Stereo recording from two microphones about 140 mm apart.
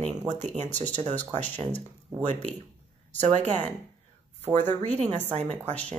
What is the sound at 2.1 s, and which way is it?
Speech, 10° right (ahead or behind).